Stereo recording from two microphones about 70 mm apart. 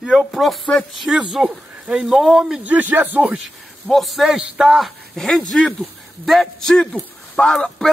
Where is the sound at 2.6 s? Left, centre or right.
Right.